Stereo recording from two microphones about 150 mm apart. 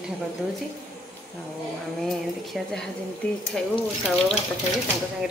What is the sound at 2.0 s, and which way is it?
Speech, centre (ahead or behind).